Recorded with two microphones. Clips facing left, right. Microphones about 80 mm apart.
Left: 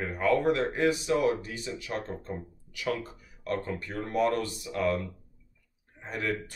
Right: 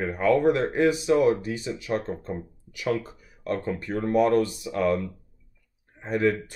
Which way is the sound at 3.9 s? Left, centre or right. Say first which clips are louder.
Right 6 dB; centre.